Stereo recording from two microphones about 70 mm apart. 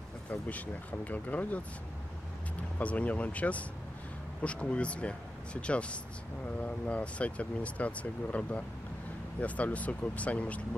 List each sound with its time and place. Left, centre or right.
0.3 s speech: left
2.8 s speech: centre